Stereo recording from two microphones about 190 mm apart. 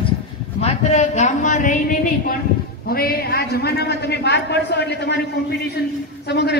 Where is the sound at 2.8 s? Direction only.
55° left (ahead or behind).